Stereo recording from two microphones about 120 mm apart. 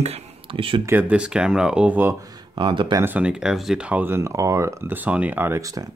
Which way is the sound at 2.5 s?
40° right (ahead or behind).